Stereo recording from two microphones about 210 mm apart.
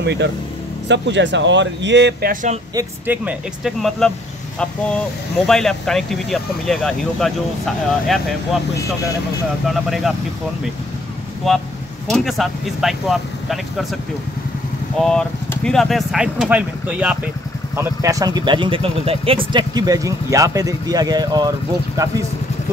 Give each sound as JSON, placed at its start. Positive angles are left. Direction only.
{"t": 0.0, "sound": "speech", "side_deg": -55}
{"t": 2.7, "sound": "speech", "side_deg": -10}
{"t": 5.5, "sound": "speech", "side_deg": 0}
{"t": 9.7, "sound": "speech", "side_deg": 0}
{"t": 11.4, "sound": "speech", "side_deg": 0}
{"t": 15.0, "sound": "speech", "side_deg": 5}